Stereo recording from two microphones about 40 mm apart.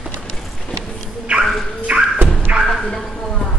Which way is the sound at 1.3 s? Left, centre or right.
Right.